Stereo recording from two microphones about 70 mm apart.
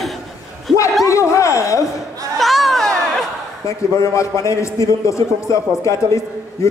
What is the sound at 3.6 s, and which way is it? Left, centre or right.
A man's voice, left.